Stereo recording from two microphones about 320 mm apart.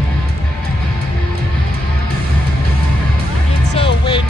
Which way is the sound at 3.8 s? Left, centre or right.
Centre.